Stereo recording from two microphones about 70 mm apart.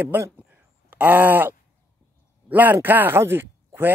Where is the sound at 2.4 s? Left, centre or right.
Right.